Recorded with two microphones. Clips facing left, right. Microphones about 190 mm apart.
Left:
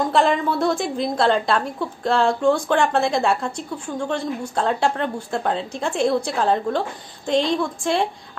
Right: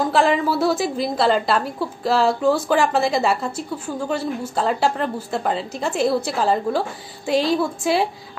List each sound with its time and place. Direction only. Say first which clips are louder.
0.1 s a woman's voice: right 1 dB; 5° right (ahead or behind)